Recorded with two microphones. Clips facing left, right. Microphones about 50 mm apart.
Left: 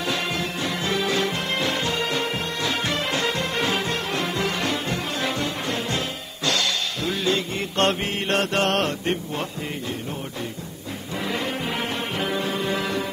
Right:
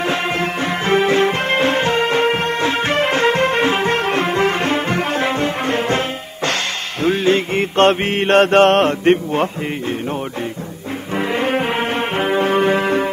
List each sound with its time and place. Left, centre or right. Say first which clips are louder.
0.0 s music: right 7 dB; right
11.1 s brass instrument: right 9 dB; right